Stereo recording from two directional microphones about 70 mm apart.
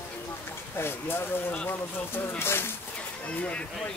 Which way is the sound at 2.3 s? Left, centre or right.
Left.